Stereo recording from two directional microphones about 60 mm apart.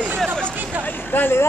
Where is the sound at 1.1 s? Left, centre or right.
Left.